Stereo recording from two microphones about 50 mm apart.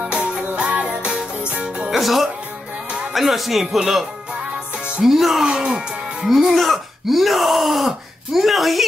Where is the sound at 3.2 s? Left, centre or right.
Centre.